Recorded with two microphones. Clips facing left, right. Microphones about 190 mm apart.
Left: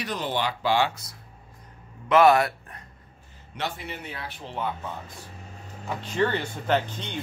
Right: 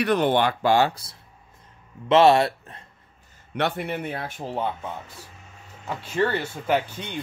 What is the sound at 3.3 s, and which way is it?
Speech, 60° right (ahead or behind).